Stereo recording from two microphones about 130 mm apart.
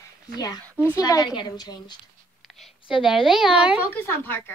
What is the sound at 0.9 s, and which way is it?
A woman's voice, 30° left (ahead or behind).